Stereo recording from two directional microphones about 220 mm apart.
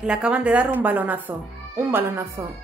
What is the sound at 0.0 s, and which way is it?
A woman's voice, 5° right (ahead or behind).